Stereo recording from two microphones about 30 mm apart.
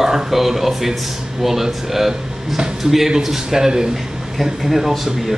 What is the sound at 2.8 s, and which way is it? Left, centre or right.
Speech, right.